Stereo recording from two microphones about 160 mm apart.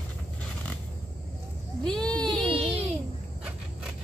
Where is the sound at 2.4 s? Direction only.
35° right (ahead or behind).